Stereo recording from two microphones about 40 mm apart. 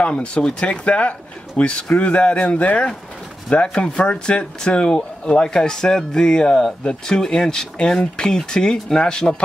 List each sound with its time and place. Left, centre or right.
0.0 s speech: left
3.4 s speech: left